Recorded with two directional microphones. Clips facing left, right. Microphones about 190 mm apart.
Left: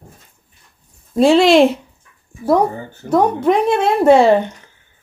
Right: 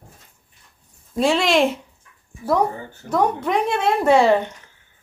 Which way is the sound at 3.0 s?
30° left (ahead or behind).